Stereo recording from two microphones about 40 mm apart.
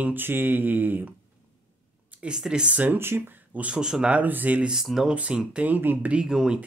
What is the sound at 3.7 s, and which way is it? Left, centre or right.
Speech, centre.